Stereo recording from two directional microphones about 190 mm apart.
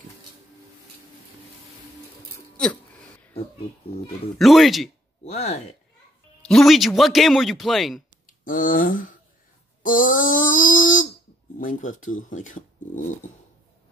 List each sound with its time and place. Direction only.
2.3 s a sound: 5° left (ahead or behind)
4.4 s speech: centre (ahead or behind)
5.2 s speech: 35° left (ahead or behind)
6.4 s speech: centre (ahead or behind)
8.3 s speech: 45° left (ahead or behind)
9.8 s a sound: 45° left (ahead or behind)
11.5 s speech: 45° left (ahead or behind)